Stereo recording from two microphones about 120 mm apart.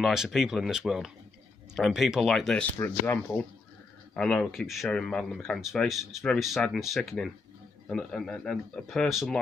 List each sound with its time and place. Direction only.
0.0 s speech: 5° right (ahead or behind)
2.8 s speech: 20° left (ahead or behind)
4.1 s speech: 5° left (ahead or behind)